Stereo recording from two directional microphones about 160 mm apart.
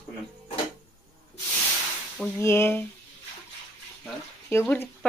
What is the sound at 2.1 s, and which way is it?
Frying, 5° left (ahead or behind).